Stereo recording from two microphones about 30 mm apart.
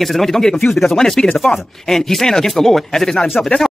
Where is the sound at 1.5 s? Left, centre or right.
Left.